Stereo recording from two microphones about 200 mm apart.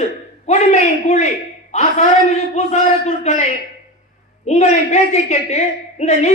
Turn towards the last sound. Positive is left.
turn(degrees=35)  # may be behind; listen again after turning